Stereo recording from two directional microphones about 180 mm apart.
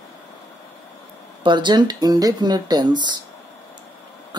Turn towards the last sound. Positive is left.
turn(degrees=-25)  # may be behind; listen again after turning